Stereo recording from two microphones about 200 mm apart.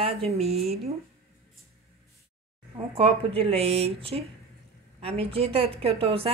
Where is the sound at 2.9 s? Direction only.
30° right (ahead or behind).